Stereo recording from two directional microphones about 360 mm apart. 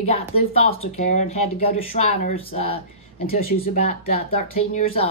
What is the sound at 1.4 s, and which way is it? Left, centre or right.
Speech, left.